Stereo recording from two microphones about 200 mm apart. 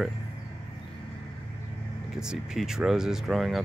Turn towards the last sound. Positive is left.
turn(degrees=0)  # may be behind; listen again after turning